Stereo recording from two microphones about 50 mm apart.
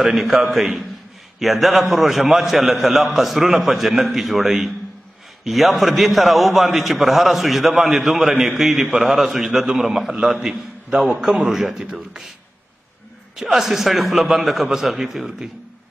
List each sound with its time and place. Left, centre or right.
0.0 s a man's voice: centre
13.4 s a man's voice: centre